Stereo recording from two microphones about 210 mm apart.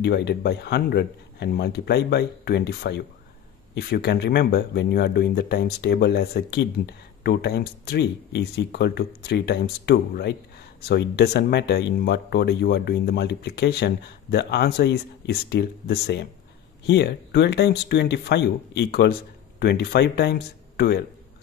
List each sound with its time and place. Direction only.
0.0 s speech: 50° left (ahead or behind)